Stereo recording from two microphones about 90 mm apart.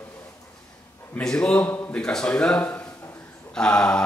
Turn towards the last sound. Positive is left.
turn(degrees=10)  # may be behind; listen again after turning